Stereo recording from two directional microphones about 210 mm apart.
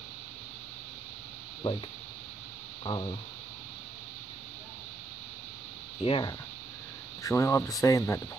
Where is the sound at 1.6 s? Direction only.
25° left (ahead or behind).